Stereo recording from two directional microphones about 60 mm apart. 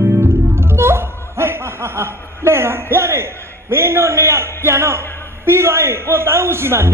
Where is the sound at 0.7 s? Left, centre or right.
Right.